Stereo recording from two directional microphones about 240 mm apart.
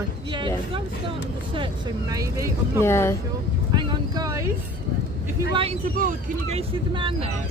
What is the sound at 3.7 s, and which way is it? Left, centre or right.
Boat, centre.